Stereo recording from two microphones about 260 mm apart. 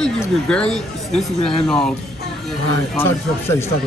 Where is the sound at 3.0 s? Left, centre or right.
Centre.